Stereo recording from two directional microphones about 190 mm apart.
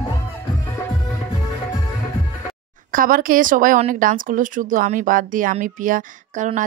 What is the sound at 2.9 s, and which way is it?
Speech, 50° right (ahead or behind).